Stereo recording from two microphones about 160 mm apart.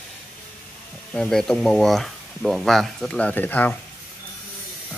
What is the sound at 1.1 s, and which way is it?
Speech, 5° left (ahead or behind).